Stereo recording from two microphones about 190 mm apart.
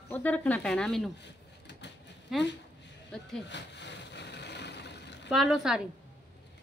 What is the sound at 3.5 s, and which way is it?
Vehicle, 65° left (ahead or behind).